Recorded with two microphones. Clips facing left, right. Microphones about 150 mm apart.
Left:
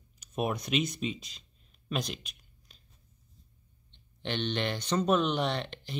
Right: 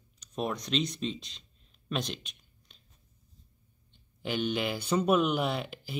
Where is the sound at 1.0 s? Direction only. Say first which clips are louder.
Even; 5° left (ahead or behind).